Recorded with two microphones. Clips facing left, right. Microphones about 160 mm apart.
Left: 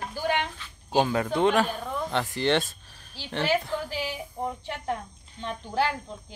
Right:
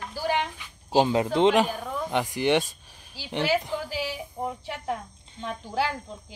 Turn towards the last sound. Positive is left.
turn(degrees=-10)  # may be behind; listen again after turning